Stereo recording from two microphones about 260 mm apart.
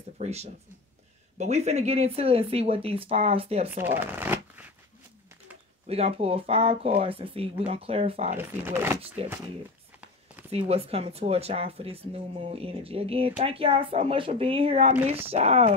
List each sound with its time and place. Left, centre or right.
0.2 s speech: right
3.7 s shuffling cards: centre
5.9 s speech: right
8.4 s speech: centre
9.2 s speech: right
10.7 s speech: right